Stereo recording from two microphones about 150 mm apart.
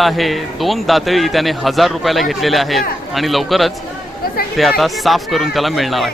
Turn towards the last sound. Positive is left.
turn(degrees=0)  # may be behind; listen again after turning